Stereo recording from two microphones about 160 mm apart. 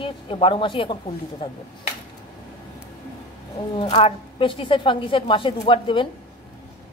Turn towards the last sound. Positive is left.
turn(degrees=30)  # may be behind; listen again after turning